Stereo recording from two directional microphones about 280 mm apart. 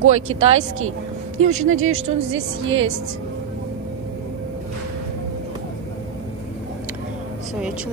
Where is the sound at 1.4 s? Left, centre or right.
Right.